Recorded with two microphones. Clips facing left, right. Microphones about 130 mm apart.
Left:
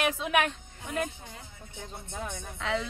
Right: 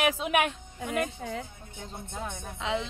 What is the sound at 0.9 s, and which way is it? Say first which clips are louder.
Speech: right 3 dB; 90° right.